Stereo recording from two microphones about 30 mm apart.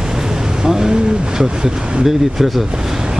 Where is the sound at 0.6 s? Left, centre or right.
Right.